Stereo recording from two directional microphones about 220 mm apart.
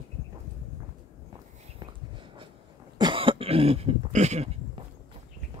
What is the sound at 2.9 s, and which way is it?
Cough, 20° right (ahead or behind).